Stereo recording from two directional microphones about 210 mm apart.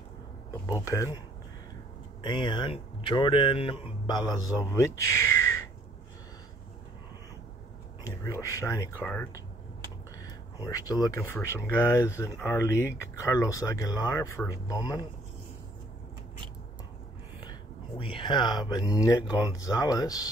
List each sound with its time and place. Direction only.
0.8 s speech: 15° left (ahead or behind)
2.2 s speech: 20° left (ahead or behind)
8.1 s speech: 15° left (ahead or behind)
10.6 s speech: 15° left (ahead or behind)
17.4 s speech: 25° left (ahead or behind)